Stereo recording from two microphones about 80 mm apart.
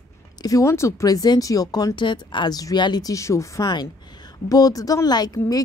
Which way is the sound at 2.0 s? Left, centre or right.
Left.